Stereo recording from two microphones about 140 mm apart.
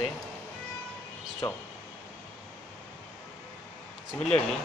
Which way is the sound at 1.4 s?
25° left (ahead or behind).